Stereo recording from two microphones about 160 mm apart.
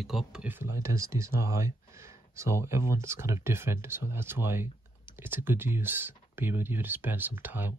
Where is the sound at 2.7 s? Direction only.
15° right (ahead or behind).